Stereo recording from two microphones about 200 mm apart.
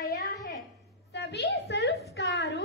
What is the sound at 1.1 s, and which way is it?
A woman's voice, 60° left (ahead or behind).